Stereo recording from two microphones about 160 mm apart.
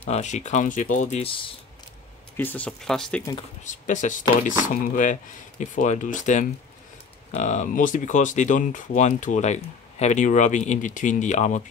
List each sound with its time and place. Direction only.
0.0 s speech: 45° left (ahead or behind)
2.3 s speech: 10° left (ahead or behind)
3.6 s speech: 50° left (ahead or behind)